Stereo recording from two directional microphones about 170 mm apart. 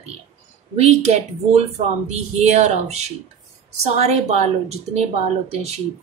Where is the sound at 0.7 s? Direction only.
40° right (ahead or behind).